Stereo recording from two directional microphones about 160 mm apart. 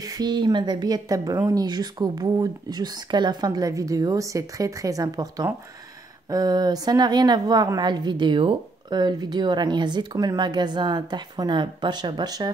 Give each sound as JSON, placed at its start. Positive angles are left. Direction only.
{"t": 0.0, "sound": "a woman's voice", "side_deg": -25}